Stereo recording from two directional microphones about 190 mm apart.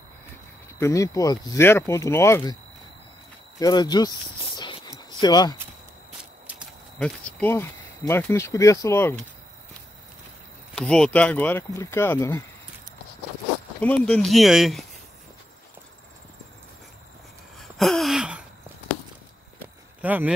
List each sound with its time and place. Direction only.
0.7 s speech: 15° left (ahead or behind)
3.5 s speech: 20° left (ahead or behind)
4.6 s a sound: 25° left (ahead or behind)
5.2 s speech: 20° left (ahead or behind)
7.0 s speech: 5° left (ahead or behind)
10.7 s speech: 5° left (ahead or behind)
13.7 s speech: 5° left (ahead or behind)
17.6 s a sound: centre (ahead or behind)
20.0 s speech: 10° right (ahead or behind)